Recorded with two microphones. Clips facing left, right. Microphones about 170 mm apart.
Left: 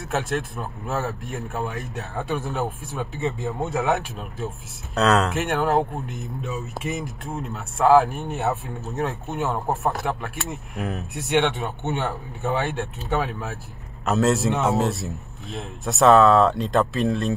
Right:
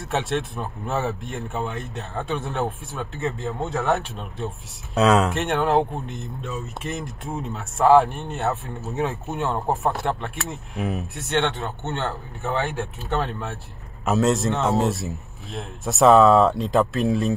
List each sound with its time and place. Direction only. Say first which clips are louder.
0.1 s speech: right 1 dB; centre (ahead or behind)
11.5 s a man's voice: left 2 dB; 15° left (ahead or behind)
12.7 s speech: left 1 dB; 5° left (ahead or behind)